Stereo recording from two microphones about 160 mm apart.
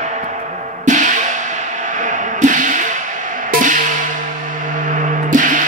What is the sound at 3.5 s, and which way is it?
Music, 55° right (ahead or behind).